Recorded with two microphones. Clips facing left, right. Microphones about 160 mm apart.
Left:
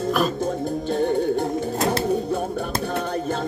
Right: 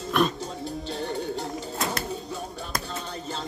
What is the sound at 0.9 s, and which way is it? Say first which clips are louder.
Music: left 11 dB; 55° left (ahead or behind).